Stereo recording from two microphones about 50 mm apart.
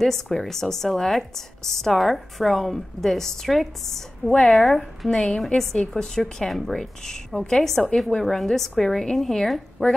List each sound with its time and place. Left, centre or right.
0.0 s a woman's voice: centre
4.3 s a woman's voice: centre
4.6 s a woman's voice: centre
5.1 s a woman's voice: centre